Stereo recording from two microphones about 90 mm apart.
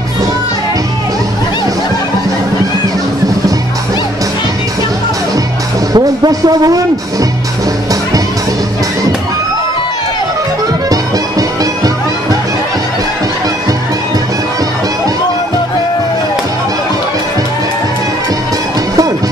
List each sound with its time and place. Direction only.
5.9 s speech: 45° right (ahead or behind)
10.9 s music: 40° right (ahead or behind)